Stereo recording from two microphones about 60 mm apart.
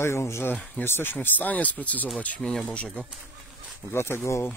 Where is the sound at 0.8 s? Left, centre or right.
Left.